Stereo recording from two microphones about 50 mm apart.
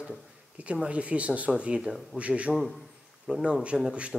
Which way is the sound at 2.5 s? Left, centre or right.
Centre.